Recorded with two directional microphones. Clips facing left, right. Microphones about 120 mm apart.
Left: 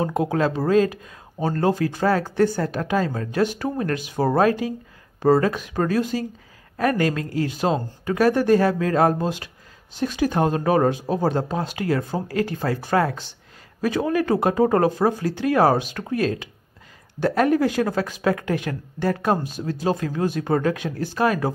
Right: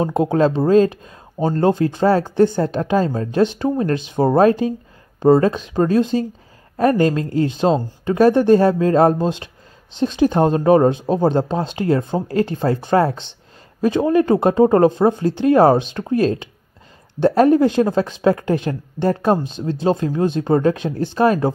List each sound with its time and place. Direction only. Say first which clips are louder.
0.0 s speech: right 5 dB; 25° right (ahead or behind)